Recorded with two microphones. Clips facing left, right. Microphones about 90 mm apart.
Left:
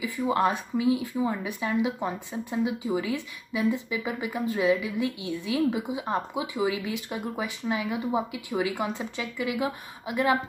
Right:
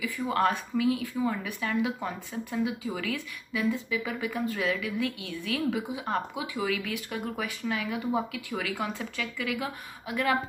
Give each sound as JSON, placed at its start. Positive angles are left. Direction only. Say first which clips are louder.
{"t": 0.0, "sound": "speech", "louder": "left 2 dB", "side_deg": 20}